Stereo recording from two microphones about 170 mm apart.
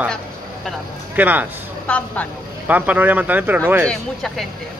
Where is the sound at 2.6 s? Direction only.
10° right (ahead or behind).